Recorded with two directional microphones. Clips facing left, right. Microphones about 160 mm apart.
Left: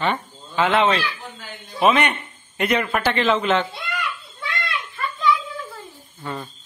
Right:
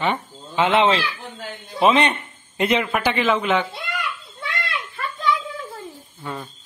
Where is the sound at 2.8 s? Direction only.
10° right (ahead or behind).